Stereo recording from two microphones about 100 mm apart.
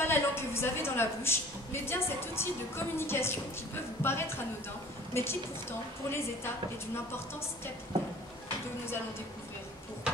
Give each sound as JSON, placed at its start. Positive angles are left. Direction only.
{"t": 0.0, "sound": "a woman's voice", "side_deg": 25}